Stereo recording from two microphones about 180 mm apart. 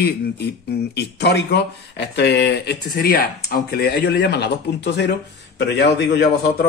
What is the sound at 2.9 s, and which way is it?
Speech, 55° left (ahead or behind).